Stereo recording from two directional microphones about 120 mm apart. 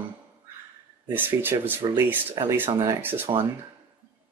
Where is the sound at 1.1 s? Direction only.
15° right (ahead or behind).